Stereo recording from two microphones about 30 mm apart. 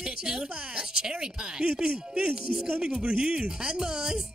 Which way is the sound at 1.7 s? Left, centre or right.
Right.